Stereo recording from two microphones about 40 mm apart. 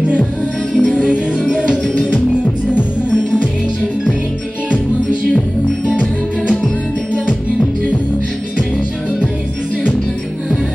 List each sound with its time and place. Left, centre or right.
0.7 s music: right